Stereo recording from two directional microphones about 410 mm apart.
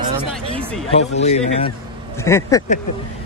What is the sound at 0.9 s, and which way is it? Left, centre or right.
Speech, centre.